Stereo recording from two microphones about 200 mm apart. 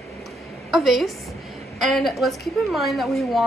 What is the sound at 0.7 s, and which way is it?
A woman's voice, centre (ahead or behind).